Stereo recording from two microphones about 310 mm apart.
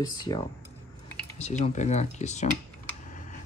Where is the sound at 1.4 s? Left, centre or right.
Left.